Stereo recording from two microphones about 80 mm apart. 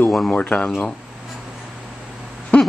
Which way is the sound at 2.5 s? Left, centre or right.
Centre.